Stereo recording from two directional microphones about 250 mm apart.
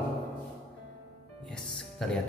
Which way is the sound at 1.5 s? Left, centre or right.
Centre.